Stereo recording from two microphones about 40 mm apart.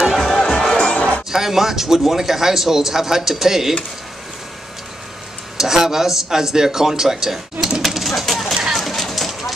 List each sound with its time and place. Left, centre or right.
0.0 s music: centre
0.4 s music: centre
1.3 s a man's voice: centre
5.6 s a man's voice: centre
7.6 s a sound: centre